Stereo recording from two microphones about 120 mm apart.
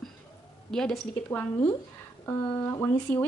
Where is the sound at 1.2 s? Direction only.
20° left (ahead or behind).